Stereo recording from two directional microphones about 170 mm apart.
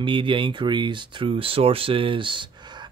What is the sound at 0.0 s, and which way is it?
Speech, 30° right (ahead or behind).